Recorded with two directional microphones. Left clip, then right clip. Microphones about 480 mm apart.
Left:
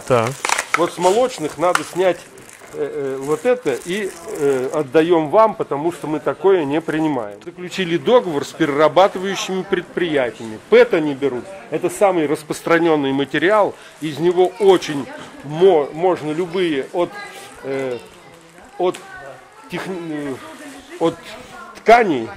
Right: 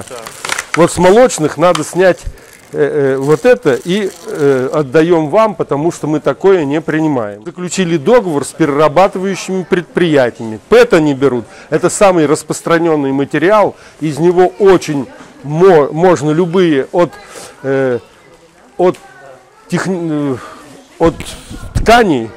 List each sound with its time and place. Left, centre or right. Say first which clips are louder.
0.7 s speech: right 10 dB; right
15.8 s speech: right 8 dB; right
19.7 s speech: right 10 dB; right
21.7 s speech: right 4 dB; right